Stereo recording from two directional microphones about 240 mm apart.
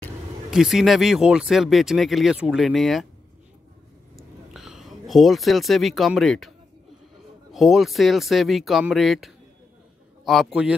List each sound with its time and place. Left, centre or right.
0.0 s speech: centre
4.6 s speech: centre
7.5 s speech: centre